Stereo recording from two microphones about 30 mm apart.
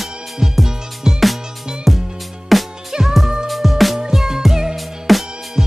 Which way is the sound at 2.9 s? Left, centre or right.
Centre.